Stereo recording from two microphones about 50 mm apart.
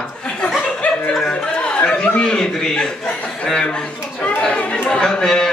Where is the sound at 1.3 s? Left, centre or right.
Left.